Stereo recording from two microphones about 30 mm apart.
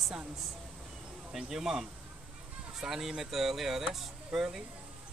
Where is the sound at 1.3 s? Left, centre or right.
Centre.